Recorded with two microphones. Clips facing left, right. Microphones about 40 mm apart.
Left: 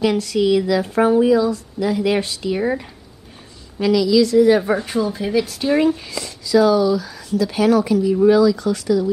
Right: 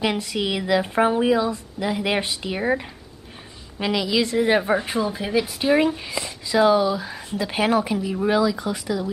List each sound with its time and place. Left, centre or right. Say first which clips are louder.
0.0 s speech: left 6 dB; right
2.6 s speech: right 1 dB; centre
3.8 s a woman's voice: left 7 dB; right
4.6 s speech: left 2 dB; centre